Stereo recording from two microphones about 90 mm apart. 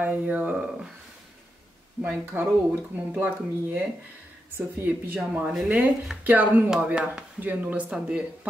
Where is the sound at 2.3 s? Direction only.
15° right (ahead or behind).